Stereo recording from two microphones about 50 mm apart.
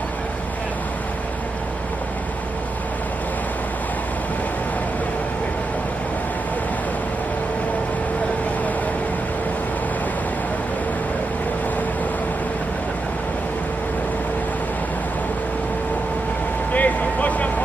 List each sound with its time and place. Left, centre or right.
16.7 s vehicle: left